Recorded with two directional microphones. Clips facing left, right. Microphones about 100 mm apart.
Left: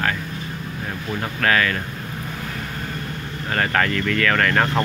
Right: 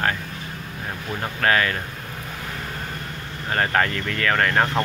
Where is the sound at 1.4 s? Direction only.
25° right (ahead or behind).